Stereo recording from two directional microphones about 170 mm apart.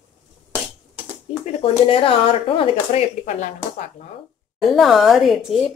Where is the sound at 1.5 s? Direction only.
35° left (ahead or behind).